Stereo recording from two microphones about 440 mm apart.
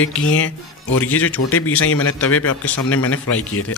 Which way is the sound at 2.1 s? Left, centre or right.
Centre.